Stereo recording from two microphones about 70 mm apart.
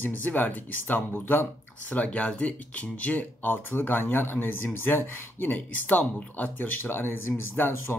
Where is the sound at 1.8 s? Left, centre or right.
Centre.